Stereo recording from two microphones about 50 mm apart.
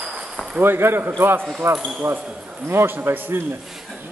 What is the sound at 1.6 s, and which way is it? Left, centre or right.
Speech, right.